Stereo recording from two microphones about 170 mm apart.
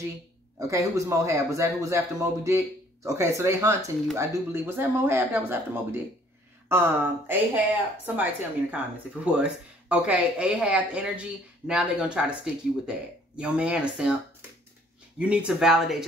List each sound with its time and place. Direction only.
0.6 s speech: 20° right (ahead or behind)
13.4 s speech: 5° right (ahead or behind)
15.1 s speech: 5° right (ahead or behind)